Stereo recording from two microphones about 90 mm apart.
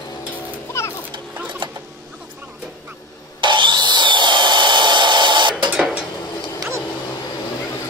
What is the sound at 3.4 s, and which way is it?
Tools, 60° right (ahead or behind).